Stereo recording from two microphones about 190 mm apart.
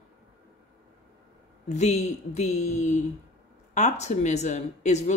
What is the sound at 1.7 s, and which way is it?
Speech, 40° left (ahead or behind).